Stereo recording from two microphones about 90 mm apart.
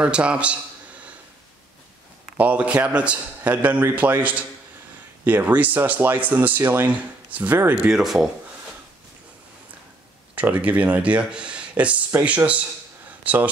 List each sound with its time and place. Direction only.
0.0 s a man's voice: 10° right (ahead or behind)
2.3 s a man's voice: 15° right (ahead or behind)
7.9 s speech: 5° right (ahead or behind)
10.3 s a man's voice: 15° right (ahead or behind)